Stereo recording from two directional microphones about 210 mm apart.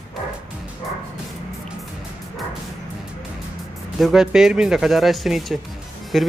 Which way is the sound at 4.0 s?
Centre (ahead or behind).